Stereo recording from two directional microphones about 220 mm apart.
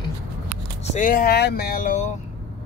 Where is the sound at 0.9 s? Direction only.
35° left (ahead or behind).